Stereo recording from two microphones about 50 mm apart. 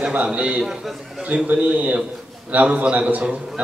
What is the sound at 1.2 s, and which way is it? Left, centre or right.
A man's voice, right.